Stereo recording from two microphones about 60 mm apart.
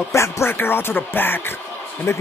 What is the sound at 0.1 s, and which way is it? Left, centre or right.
Speech, left.